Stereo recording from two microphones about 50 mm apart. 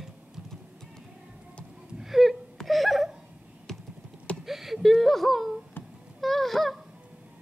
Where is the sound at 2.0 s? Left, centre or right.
Centre.